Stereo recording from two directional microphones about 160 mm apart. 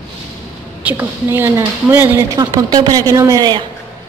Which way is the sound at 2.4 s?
25° right (ahead or behind).